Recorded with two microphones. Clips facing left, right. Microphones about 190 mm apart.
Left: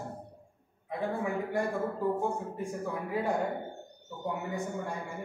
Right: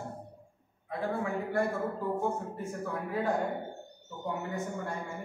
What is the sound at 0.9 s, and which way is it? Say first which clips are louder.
A man's voice: even; 20° left (ahead or behind).